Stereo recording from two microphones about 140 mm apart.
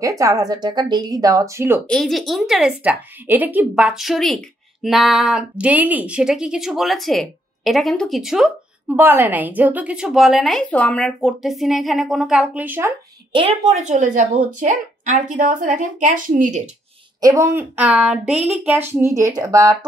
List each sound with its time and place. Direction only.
0.2 s speech: 25° right (ahead or behind)
1.9 s speech: 5° left (ahead or behind)
8.9 s speech: 15° right (ahead or behind)
12.6 s a woman's voice: 15° right (ahead or behind)
13.8 s a woman's voice: 60° right (ahead or behind)
17.2 s a woman's voice: 20° right (ahead or behind)